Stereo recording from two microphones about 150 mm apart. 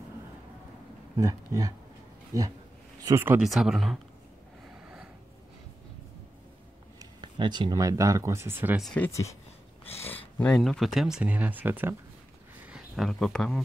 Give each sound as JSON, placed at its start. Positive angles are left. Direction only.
{"t": 1.1, "sound": "speech", "side_deg": -20}
{"t": 3.3, "sound": "speech", "side_deg": 0}
{"t": 4.8, "sound": "a sound", "side_deg": -5}
{"t": 7.0, "sound": "speech", "side_deg": -30}
{"t": 8.9, "sound": "speech", "side_deg": 15}